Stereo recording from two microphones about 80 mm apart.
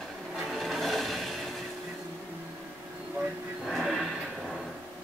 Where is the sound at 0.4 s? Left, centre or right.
Centre.